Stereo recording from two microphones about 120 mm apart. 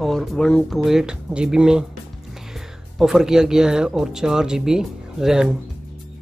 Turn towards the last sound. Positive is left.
turn(degrees=-5)  # may be behind; listen again after turning